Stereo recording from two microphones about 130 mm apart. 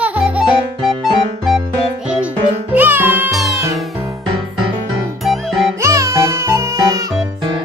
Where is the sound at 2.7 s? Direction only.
15° right (ahead or behind).